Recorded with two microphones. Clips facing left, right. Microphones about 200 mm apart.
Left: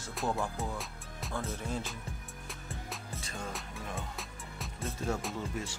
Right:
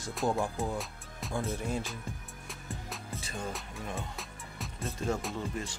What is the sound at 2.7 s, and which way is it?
Music, centre (ahead or behind).